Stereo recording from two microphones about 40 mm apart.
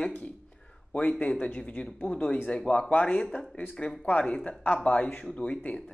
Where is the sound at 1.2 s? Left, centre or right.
Left.